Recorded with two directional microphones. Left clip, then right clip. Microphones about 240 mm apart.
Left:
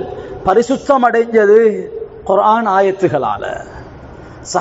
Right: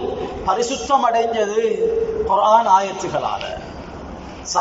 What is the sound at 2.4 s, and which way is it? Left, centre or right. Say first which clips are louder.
Speech: left 2 dB; left.